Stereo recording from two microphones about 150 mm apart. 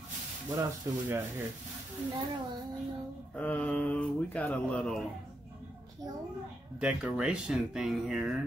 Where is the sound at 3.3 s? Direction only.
10° left (ahead or behind).